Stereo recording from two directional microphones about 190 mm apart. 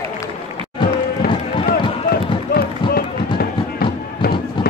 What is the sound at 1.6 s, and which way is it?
Run, 55° left (ahead or behind).